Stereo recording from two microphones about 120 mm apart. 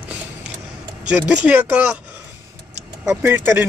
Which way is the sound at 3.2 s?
20° right (ahead or behind).